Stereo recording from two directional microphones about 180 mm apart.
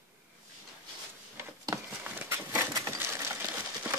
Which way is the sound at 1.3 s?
15° right (ahead or behind).